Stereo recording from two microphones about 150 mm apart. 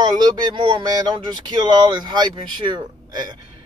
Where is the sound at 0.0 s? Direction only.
30° right (ahead or behind).